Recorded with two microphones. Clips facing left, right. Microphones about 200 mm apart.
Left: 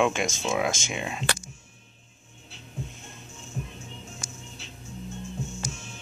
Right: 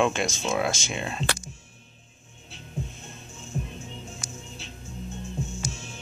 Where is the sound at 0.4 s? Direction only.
10° left (ahead or behind).